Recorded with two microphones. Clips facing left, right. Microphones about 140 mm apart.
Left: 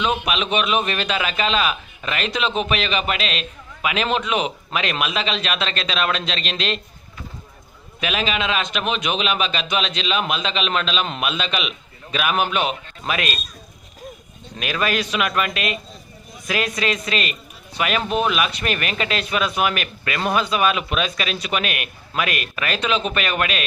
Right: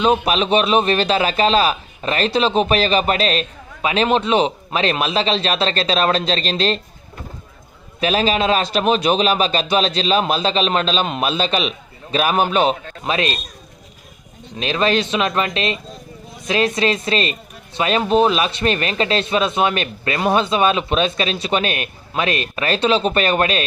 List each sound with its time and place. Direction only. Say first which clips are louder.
0.0 s a man's voice: right 6 dB; 35° right (ahead or behind)
8.0 s a man's voice: right 6 dB; 35° right (ahead or behind)
14.6 s a man's voice: right 5 dB; 25° right (ahead or behind)